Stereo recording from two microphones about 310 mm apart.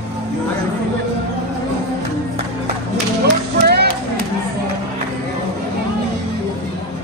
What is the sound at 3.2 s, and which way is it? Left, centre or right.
Music, right.